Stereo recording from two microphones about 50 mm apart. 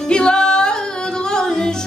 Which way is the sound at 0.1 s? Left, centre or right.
Centre.